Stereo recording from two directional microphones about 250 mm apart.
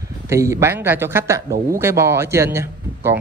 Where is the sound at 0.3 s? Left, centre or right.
Centre.